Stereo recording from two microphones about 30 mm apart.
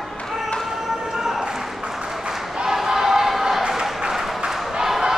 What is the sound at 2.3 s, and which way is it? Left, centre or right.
Choir, centre.